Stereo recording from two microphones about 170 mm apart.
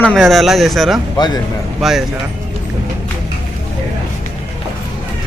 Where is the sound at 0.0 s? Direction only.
Centre (ahead or behind).